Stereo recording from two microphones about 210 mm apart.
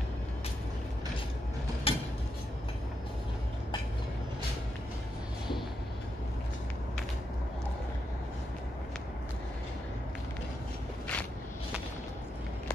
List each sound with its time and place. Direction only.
1.9 s vehicle: 25° left (ahead or behind)